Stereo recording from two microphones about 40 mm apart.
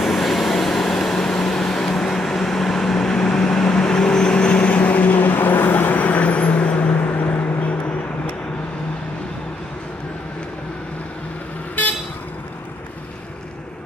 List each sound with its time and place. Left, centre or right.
0.0 s vehicle: centre; by 4.7 s left
4.7 s vehicle: left
7.0 s vehicle: left